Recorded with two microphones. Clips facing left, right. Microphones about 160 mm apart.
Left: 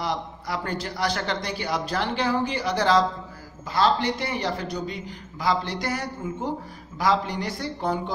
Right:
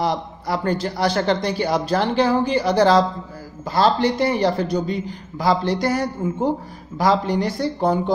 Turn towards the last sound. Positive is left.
turn(degrees=-35)  # may be behind; listen again after turning